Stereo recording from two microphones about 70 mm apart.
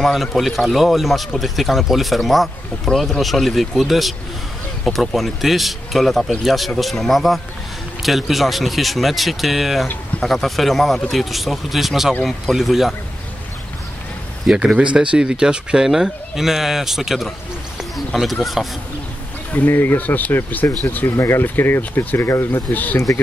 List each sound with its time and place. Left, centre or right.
0.0 s speech: centre
14.8 s speech: centre
19.5 s speech: left